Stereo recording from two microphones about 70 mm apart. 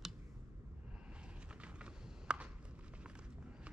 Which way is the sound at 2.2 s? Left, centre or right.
Centre.